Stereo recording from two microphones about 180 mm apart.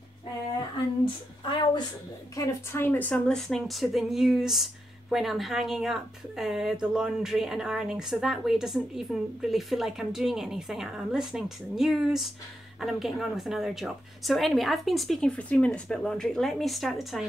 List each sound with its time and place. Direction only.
1.0 s speech: 25° left (ahead or behind)
2.3 s speech: 15° left (ahead or behind); by 17.2 s centre (ahead or behind)